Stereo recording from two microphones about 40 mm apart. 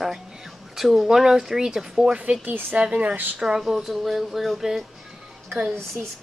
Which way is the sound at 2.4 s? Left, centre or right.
Right.